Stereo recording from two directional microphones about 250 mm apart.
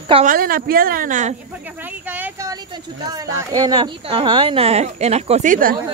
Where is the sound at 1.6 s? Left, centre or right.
Centre; by 5.7 s right.